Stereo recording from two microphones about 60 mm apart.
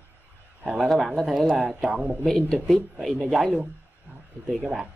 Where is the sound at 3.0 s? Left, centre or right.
Centre.